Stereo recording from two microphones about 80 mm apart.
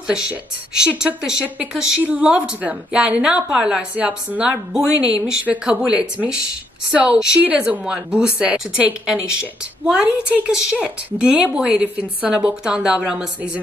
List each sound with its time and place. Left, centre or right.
0.0 s a woman's voice: centre
2.0 s a woman's voice: centre